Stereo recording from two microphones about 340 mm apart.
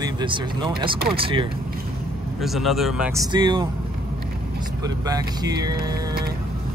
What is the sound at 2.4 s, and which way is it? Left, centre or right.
Speech, centre.